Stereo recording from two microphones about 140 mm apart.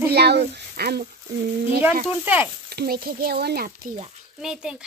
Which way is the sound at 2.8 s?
90° right.